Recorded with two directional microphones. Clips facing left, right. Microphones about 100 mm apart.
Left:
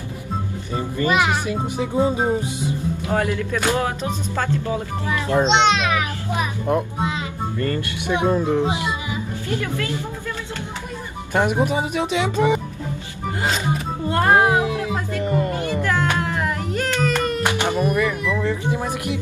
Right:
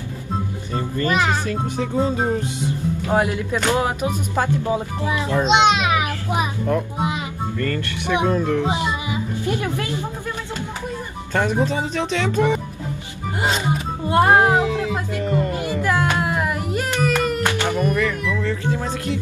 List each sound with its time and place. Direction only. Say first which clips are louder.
0.7 s speech: left 1 dB; 15° left (ahead or behind)
3.1 s speech: right 2 dB; 15° right (ahead or behind)
5.5 s a sound: right 4 dB; 15° right (ahead or behind)
6.7 s speech: even; 20° left (ahead or behind)
8.6 s speech: right 1 dB; 20° right (ahead or behind)
11.3 s speech: left 1 dB; 15° left (ahead or behind)
14.0 s speech: right 3 dB; 15° right (ahead or behind)
14.6 s speech: right 1 dB; 10° left (ahead or behind)
15.5 s a sound: right 1 dB; 10° right (ahead or behind)
17.5 s speech: even; 15° left (ahead or behind)